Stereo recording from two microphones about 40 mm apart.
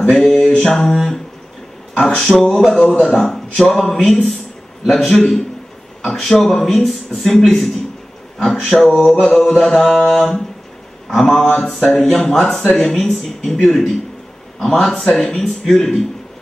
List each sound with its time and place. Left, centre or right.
0.1 s a sound: centre
0.6 s mantra: centre
2.0 s speech: centre
2.5 s a man's voice: centre
9.6 s a man's voice: centre